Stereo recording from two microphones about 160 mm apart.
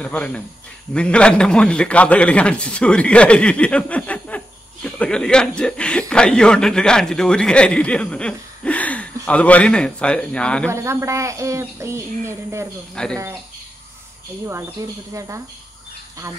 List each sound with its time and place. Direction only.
0.0 s speech: 10° left (ahead or behind)
10.7 s speech: 15° right (ahead or behind)
12.9 s speech: 5° left (ahead or behind)
14.4 s speech: 20° right (ahead or behind)